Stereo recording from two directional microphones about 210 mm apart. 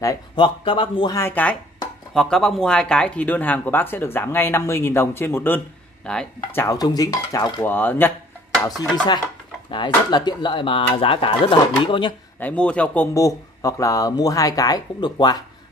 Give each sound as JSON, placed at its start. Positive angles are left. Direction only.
{"t": 0.0, "sound": "speech", "side_deg": 20}
{"t": 9.7, "sound": "speech", "side_deg": 20}
{"t": 12.4, "sound": "speech", "side_deg": 5}